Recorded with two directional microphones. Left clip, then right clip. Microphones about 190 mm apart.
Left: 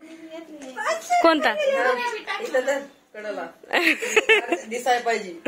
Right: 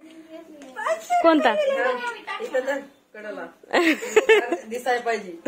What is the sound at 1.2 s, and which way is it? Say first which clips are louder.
Speech: right 1 dB; 10° right (ahead or behind).